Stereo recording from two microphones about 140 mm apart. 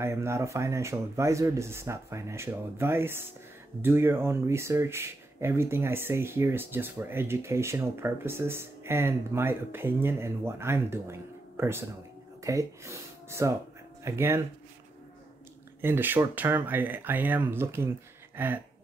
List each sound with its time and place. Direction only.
0.0 s speech: 20° right (ahead or behind)
15.8 s speech: 15° right (ahead or behind)
18.3 s a sound: 15° right (ahead or behind)